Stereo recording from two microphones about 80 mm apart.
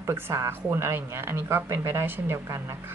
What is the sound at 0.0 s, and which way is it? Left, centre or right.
A woman's voice, right.